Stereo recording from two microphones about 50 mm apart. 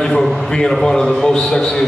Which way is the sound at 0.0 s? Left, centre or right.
Centre.